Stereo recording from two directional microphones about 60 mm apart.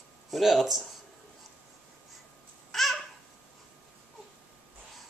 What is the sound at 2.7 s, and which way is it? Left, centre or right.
Babbling, centre.